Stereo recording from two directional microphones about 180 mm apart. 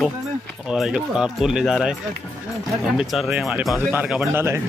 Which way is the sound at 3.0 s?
5° right (ahead or behind).